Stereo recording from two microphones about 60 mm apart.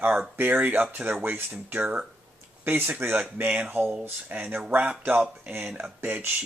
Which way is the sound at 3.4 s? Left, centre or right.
Right.